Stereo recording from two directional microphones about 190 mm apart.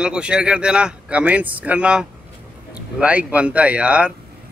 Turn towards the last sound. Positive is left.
turn(degrees=-5)  # may be behind; listen again after turning